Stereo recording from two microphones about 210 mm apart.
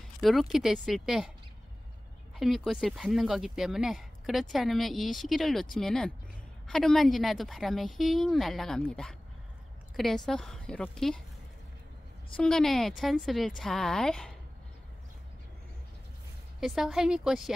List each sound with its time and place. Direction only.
0.2 s speech: centre (ahead or behind)
2.3 s speech: centre (ahead or behind)
12.4 s speech: 5° left (ahead or behind)
16.5 s speech: centre (ahead or behind)